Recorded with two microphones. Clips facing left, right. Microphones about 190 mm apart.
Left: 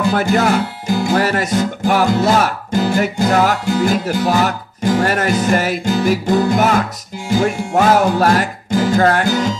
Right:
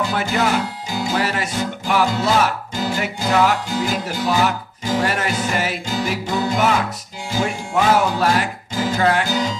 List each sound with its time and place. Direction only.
0.1 s speech: 45° left (ahead or behind)
1.0 s music: 50° left (ahead or behind)